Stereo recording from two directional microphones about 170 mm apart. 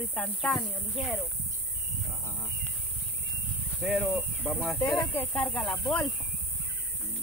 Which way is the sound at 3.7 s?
5° right (ahead or behind).